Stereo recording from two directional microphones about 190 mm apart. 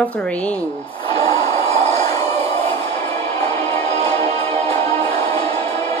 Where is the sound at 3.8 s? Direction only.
35° right (ahead or behind).